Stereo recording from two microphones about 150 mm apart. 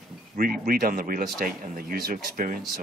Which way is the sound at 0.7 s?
75° right (ahead or behind).